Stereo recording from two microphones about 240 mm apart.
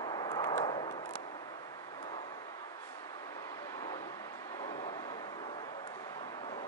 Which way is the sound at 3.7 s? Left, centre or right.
Centre.